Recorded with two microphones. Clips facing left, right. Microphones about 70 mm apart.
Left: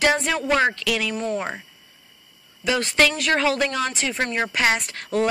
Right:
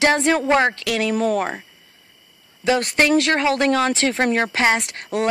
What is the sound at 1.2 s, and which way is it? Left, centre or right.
Speech, right.